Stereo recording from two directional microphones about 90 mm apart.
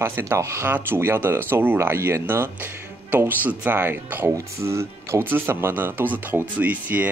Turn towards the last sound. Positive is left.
turn(degrees=-15)  # may be behind; listen again after turning